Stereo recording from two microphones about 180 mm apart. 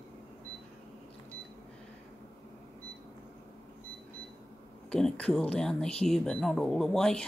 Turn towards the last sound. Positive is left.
turn(degrees=5)  # may be behind; listen again after turning